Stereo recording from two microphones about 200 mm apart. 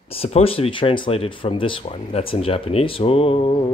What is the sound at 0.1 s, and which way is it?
Speech, 30° left (ahead or behind).